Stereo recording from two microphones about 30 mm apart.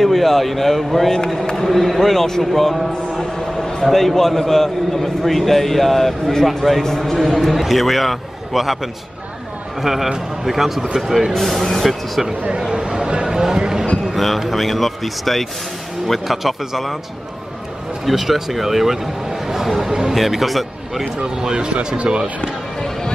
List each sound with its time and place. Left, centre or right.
0.0 s a man's voice: centre
9.8 s a man's voice: centre
12.5 s a sound: right
14.0 s a sound: centre
14.5 s a man's voice: centre
18.0 s speech: centre
19.9 s speech: centre
20.2 s a man's voice: centre
21.2 s speech: right
21.7 s speech: right